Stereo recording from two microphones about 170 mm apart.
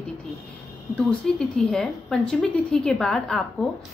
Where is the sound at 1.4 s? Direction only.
5° left (ahead or behind).